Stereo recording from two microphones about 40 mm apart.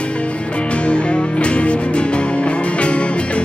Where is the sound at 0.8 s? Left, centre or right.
Left.